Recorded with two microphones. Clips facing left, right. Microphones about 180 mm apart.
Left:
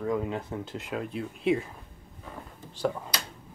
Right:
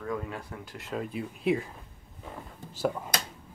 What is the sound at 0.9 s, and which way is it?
Speech, centre (ahead or behind).